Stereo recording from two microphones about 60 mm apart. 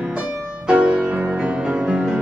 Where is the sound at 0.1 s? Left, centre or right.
Centre.